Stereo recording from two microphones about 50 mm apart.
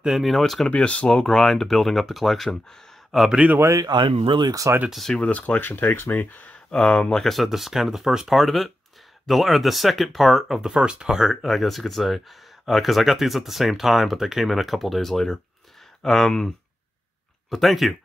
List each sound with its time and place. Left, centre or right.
0.0 s speech: centre
0.7 s speech: left; by 3.3 s centre
3.5 s speech: right
4.9 s speech: centre
5.2 s speech: left
5.6 s speech: left
6.1 s speech: left
6.7 s speech: centre
7.2 s speech: centre
10.7 s speech: centre